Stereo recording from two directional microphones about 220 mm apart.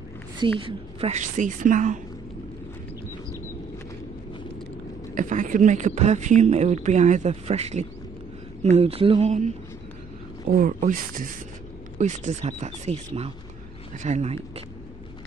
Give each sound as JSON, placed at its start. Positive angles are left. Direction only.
{"t": 0.4, "sound": "speech", "side_deg": -25}
{"t": 5.1, "sound": "speech", "side_deg": -35}
{"t": 10.5, "sound": "speech", "side_deg": -40}